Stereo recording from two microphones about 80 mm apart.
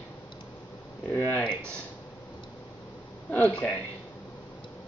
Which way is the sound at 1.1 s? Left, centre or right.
Left.